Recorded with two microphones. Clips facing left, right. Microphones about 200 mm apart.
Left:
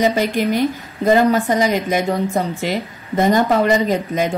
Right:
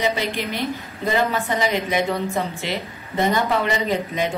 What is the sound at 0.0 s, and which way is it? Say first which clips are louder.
A woman's voice: left 7 dB; 45° left (ahead or behind).